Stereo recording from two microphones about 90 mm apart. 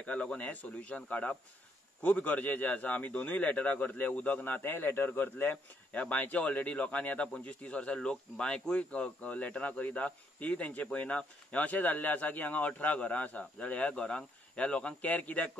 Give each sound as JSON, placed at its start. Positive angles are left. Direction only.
{"t": 0.0, "sound": "a man's voice", "side_deg": 10}